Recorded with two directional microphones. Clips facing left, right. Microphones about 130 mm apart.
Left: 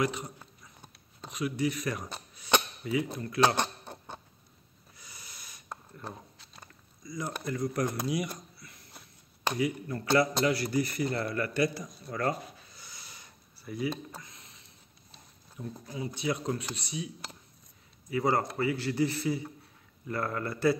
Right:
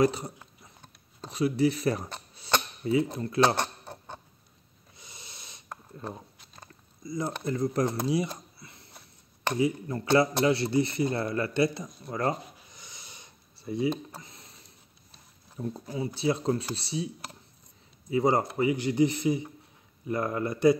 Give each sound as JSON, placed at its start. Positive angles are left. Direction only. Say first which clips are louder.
{"t": 0.0, "sound": "a man's voice", "louder": "right 6 dB", "side_deg": -35}
{"t": 4.9, "sound": "snort", "louder": "right 2 dB", "side_deg": -25}
{"t": 7.0, "sound": "a man's voice", "louder": "right 5 dB", "side_deg": -30}
{"t": 12.7, "sound": "a sound", "louder": "right 1 dB", "side_deg": -20}
{"t": 15.6, "sound": "speech", "louder": "right 5 dB", "side_deg": -35}
{"t": 18.1, "sound": "a man's voice", "louder": "right 4 dB", "side_deg": -25}